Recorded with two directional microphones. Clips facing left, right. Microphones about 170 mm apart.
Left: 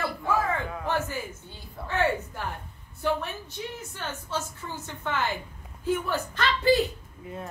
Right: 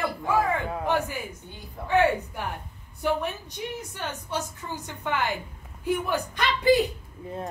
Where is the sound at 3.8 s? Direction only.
15° right (ahead or behind).